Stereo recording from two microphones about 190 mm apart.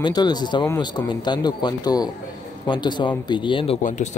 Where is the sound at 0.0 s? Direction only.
20° left (ahead or behind).